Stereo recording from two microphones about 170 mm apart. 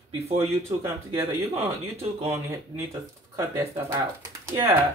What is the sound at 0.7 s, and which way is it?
Speech, 15° right (ahead or behind).